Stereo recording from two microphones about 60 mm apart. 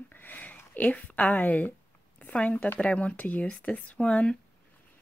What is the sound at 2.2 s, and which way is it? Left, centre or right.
Speech, left.